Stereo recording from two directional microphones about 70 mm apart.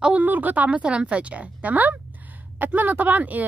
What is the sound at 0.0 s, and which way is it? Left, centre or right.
Speech, right.